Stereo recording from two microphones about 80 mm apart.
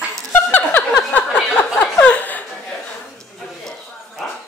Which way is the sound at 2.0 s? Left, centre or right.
Left.